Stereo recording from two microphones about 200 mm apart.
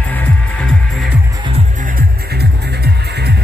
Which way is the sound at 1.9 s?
55° right (ahead or behind).